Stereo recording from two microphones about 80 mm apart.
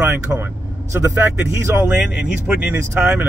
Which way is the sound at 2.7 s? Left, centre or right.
Right.